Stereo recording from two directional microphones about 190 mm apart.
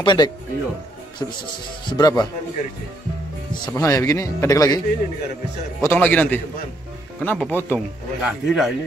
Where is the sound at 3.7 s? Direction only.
15° left (ahead or behind).